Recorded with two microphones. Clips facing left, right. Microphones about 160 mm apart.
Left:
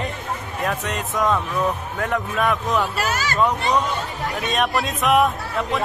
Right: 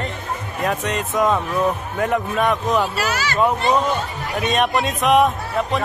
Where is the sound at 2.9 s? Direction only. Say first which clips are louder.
Right 1 dB; 45° left (ahead or behind).